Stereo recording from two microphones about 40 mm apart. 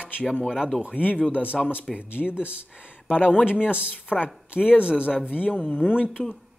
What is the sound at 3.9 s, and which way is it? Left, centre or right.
Speech, left.